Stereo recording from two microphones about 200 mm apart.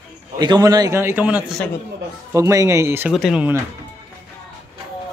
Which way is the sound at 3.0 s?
Centre (ahead or behind).